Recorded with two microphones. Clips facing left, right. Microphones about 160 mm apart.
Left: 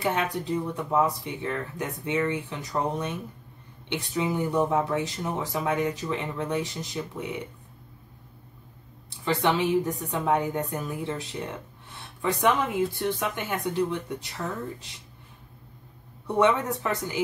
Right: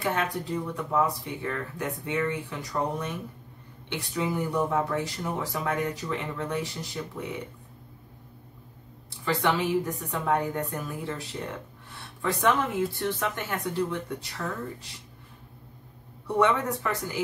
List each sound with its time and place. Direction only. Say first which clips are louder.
0.0 s speech: left 1 dB; 20° left (ahead or behind)
9.2 s speech: left 2 dB; 20° left (ahead or behind)
16.3 s speech: left 1 dB; 20° left (ahead or behind)